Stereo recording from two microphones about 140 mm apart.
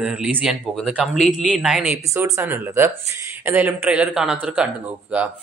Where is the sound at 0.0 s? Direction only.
10° right (ahead or behind).